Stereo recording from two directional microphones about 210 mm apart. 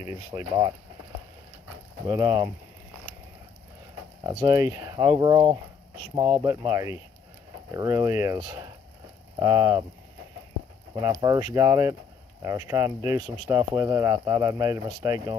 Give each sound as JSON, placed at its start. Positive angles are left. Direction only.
{"t": 0.1, "sound": "speech", "side_deg": -15}
{"t": 2.0, "sound": "speech", "side_deg": -15}
{"t": 4.2, "sound": "speech", "side_deg": -20}
{"t": 11.0, "sound": "speech", "side_deg": -15}